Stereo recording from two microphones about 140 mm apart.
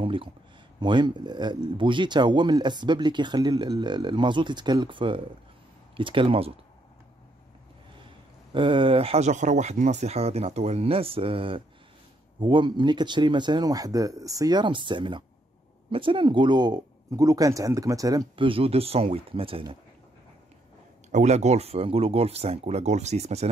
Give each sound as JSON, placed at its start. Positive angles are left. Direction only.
{"t": 0.0, "sound": "a sound", "side_deg": -40}
{"t": 0.7, "sound": "speech", "side_deg": -30}
{"t": 8.5, "sound": "speech", "side_deg": -35}
{"t": 18.3, "sound": "speech", "side_deg": -40}
{"t": 21.1, "sound": "speech", "side_deg": -55}